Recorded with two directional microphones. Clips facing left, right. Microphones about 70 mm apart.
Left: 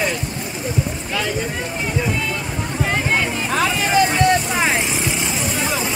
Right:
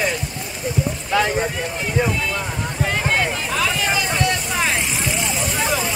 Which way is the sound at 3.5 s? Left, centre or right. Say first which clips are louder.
Left 5 dB; left.